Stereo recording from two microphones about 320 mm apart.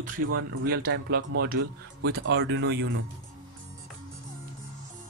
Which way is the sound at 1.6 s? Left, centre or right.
Right.